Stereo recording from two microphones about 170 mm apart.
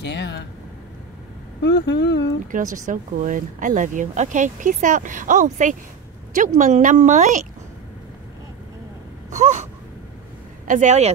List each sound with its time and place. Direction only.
0.0 s speech: 90° left
1.6 s speech: 90° left
2.4 s speech: 50° right (ahead or behind)
9.3 s a sound: 45° right (ahead or behind)
10.7 s speech: 45° right (ahead or behind)